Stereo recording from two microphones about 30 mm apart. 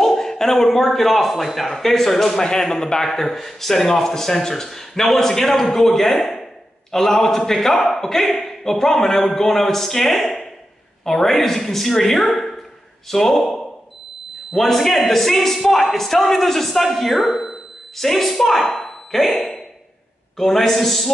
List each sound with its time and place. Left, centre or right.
0.0 s a man's voice: centre
2.4 s a man's voice: left; by 17.6 s centre
17.9 s speech: centre
20.3 s speech: centre